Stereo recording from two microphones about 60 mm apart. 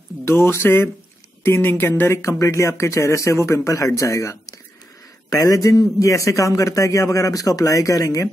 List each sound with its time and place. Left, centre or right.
0.2 s speech: left
2.1 s a man's voice: left
5.3 s a man's voice: left